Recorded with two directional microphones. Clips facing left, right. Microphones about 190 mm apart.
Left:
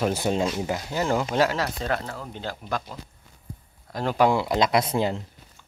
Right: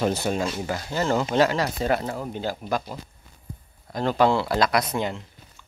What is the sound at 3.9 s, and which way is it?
A man's voice, 5° left (ahead or behind).